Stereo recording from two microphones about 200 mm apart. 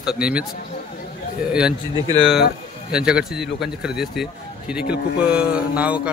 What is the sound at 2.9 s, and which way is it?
A man's voice, 5° right (ahead or behind).